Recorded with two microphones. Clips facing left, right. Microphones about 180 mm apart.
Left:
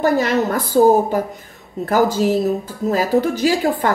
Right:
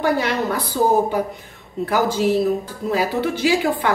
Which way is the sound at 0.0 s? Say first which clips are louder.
Left 3 dB; 45° left (ahead or behind).